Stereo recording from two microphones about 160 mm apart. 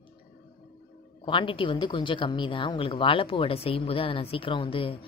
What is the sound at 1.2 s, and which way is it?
A woman's voice, 30° left (ahead or behind).